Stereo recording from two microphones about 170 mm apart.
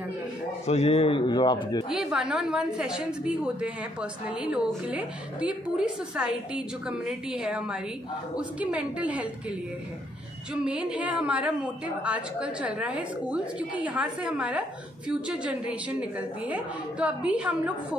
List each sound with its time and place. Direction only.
0.7 s a man's voice: 35° left (ahead or behind)
1.9 s a woman's voice: 5° right (ahead or behind)
10.5 s a woman's voice: 5° right (ahead or behind)